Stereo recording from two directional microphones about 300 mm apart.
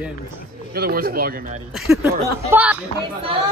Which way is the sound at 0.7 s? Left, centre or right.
Right.